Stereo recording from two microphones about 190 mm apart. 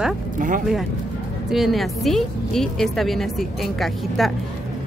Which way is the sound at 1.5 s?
Centre (ahead or behind).